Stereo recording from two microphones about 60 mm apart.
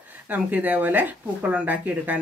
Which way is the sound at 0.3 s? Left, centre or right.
Right.